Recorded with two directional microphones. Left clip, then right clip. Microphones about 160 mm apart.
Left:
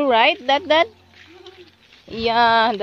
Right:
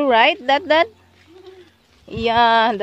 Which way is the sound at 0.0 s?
20° right (ahead or behind).